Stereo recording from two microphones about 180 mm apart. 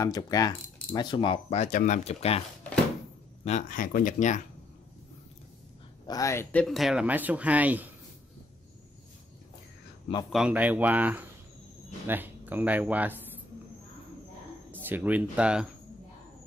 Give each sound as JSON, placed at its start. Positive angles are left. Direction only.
{"t": 0.0, "sound": "speech", "side_deg": 20}
{"t": 3.4, "sound": "speech", "side_deg": 45}
{"t": 6.0, "sound": "speech", "side_deg": 20}
{"t": 10.3, "sound": "speech", "side_deg": -5}
{"t": 14.7, "sound": "speech", "side_deg": -10}